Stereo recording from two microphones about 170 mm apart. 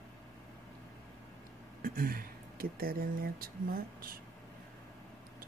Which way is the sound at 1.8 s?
55° right (ahead or behind).